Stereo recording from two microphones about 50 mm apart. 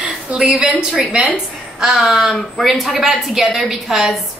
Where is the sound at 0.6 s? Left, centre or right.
Centre.